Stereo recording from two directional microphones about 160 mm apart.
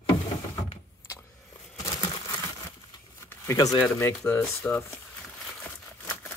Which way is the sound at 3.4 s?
20° left (ahead or behind).